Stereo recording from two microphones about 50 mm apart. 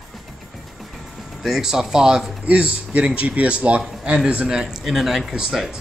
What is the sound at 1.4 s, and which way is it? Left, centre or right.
Speech, centre.